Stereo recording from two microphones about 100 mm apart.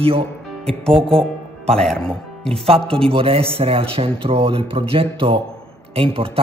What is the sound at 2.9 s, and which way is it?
Speech, 70° right (ahead or behind).